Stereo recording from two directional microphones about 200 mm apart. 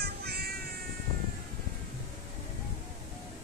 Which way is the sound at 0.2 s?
50° right (ahead or behind).